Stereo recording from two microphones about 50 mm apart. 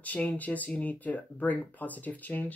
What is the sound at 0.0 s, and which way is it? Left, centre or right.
Speech, left.